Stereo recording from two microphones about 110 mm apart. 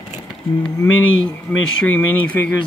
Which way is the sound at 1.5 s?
15° left (ahead or behind).